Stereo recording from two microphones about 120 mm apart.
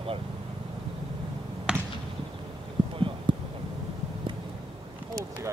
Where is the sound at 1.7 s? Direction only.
10° right (ahead or behind).